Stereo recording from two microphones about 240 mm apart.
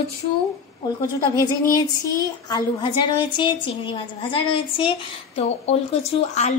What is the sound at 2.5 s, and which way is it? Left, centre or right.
Speech, centre.